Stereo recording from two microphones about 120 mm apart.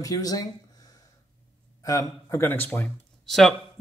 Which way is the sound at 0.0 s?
30° left (ahead or behind).